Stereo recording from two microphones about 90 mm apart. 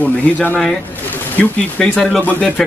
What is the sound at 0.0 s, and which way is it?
Speech, 15° left (ahead or behind).